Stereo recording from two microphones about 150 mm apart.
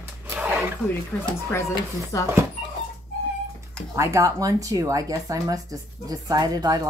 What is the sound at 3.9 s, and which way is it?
Speech, 20° right (ahead or behind).